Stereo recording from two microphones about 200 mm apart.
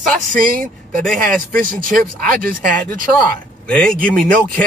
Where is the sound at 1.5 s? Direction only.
45° right (ahead or behind).